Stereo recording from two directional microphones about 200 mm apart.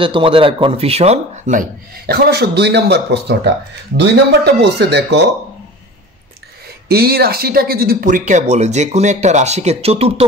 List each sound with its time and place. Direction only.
0.0 s a man's voice: 25° right (ahead or behind); by 5.2 s 55° right (ahead or behind)
6.9 s a man's voice: 50° right (ahead or behind); by 10.2 s 30° right (ahead or behind)